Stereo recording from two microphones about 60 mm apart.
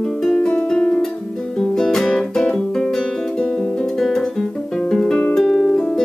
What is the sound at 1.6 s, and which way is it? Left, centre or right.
Guitar, centre.